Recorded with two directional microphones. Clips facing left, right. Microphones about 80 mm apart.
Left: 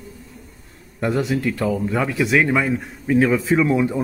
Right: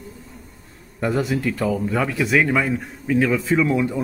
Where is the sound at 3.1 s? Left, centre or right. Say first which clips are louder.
Left 2 dB; left.